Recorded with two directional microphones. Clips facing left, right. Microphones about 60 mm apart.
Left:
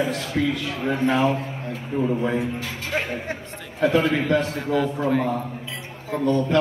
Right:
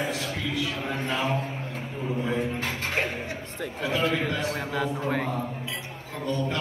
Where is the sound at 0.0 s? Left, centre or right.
Left.